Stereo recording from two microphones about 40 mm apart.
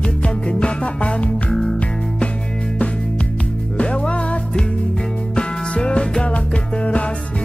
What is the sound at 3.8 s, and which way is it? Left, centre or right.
Music, left.